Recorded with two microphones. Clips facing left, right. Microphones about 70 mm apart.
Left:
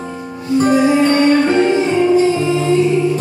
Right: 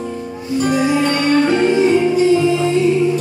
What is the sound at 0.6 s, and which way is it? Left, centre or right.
Music, left.